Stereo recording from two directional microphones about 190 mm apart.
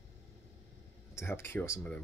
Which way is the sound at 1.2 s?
15° left (ahead or behind).